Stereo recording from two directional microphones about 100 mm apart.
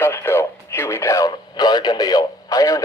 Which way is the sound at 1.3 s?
45° left (ahead or behind).